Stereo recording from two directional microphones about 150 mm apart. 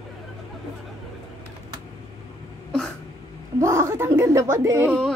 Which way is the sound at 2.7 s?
5° left (ahead or behind).